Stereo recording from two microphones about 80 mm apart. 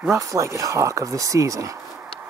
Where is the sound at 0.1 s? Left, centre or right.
Right.